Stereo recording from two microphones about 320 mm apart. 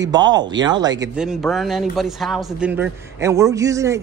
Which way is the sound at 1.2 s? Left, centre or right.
Centre.